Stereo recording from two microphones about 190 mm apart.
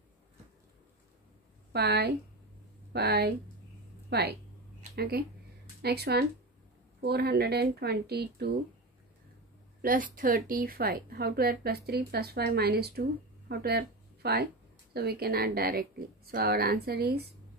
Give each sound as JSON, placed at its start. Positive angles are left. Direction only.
{"t": 1.7, "sound": "a woman's voice", "side_deg": -60}
{"t": 9.8, "sound": "a woman's voice", "side_deg": -45}